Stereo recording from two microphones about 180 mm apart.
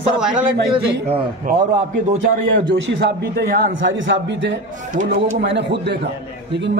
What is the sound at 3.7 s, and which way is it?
Speech, 90° right.